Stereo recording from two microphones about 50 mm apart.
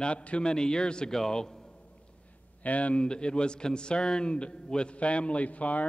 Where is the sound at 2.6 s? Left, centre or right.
Left.